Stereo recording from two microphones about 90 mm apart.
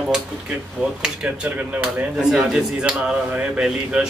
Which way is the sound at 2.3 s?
Centre (ahead or behind).